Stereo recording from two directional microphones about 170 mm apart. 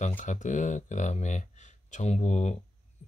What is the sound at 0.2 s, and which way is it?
Speech, 45° left (ahead or behind).